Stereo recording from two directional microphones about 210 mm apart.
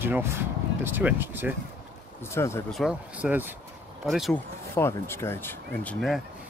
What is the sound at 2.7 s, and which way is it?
Speech, centre (ahead or behind).